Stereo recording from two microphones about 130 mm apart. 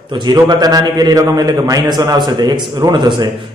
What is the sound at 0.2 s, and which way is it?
A man's voice, 30° right (ahead or behind).